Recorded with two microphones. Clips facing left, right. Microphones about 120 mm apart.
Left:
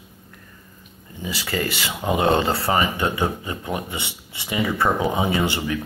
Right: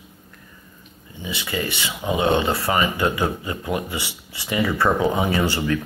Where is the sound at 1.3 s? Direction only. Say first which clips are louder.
Left 1 dB; 40° left (ahead or behind).